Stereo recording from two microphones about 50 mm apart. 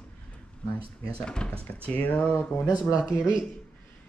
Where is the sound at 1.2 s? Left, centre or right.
Centre.